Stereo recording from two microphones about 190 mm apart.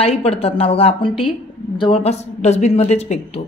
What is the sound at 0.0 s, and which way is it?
A woman's voice, 30° left (ahead or behind).